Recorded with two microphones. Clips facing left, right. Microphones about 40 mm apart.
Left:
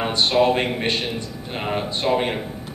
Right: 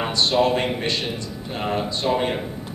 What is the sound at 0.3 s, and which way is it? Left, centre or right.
A man's voice, centre.